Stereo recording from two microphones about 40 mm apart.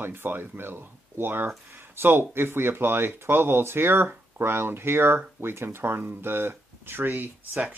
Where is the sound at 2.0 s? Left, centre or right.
Right.